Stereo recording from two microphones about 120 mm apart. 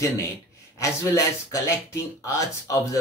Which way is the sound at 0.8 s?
25° left (ahead or behind).